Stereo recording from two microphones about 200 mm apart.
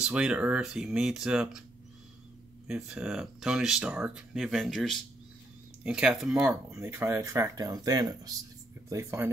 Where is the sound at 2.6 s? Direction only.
5° right (ahead or behind).